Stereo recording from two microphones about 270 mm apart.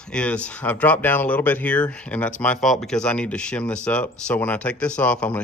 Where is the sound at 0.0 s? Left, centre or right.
Centre.